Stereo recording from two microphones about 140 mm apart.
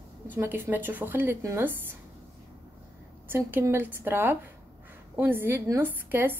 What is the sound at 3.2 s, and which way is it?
Speech, 15° right (ahead or behind).